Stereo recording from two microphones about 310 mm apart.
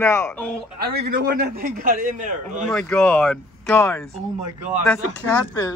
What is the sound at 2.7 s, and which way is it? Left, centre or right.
Speech, centre.